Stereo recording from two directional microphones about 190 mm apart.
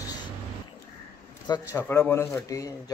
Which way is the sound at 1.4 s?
20° left (ahead or behind).